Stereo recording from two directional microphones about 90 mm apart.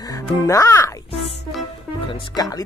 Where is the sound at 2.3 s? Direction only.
40° left (ahead or behind).